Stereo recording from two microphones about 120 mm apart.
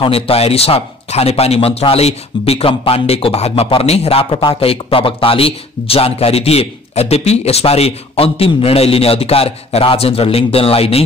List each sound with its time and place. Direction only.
0.0 s a man's voice: 55° left (ahead or behind)